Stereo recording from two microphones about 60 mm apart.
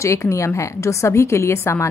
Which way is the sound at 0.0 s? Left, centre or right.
Left.